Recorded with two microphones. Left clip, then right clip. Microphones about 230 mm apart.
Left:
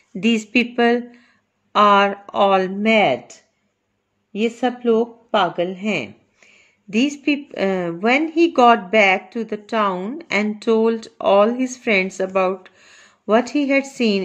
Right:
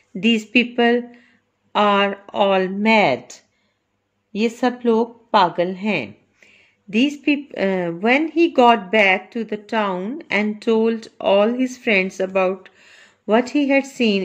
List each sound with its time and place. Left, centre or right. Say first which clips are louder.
0.1 s speech: right 1 dB; centre